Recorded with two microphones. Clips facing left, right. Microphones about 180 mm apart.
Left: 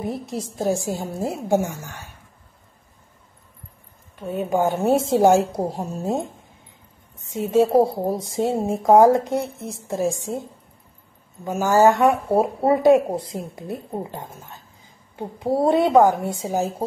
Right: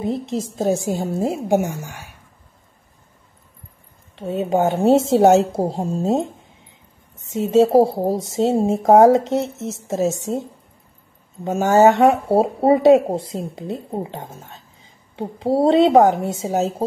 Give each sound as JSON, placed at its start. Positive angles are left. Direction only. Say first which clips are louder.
{"t": 0.0, "sound": "speech", "louder": "right 5 dB", "side_deg": -25}
{"t": 4.2, "sound": "speech", "louder": "right 3 dB", "side_deg": -25}
{"t": 11.4, "sound": "speech", "louder": "right 3 dB", "side_deg": -20}